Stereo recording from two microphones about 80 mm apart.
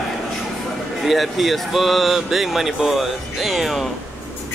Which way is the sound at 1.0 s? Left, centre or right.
Centre.